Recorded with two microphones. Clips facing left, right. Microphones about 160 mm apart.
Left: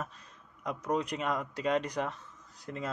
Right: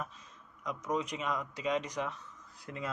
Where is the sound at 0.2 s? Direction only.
60° left (ahead or behind).